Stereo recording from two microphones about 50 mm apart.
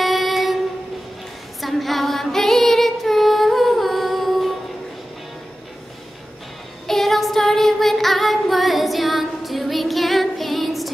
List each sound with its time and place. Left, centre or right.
0.0 s train: centre
1.6 s female singing: centre
6.9 s female singing: centre